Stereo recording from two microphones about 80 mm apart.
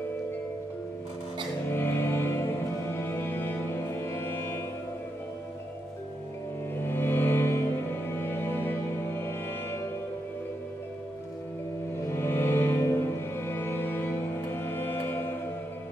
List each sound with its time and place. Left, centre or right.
1.7 s music: left
6.8 s music: left
12.1 s music: left